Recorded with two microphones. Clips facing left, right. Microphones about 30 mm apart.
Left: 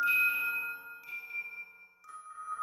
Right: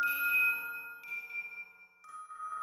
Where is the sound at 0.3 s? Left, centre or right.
Centre.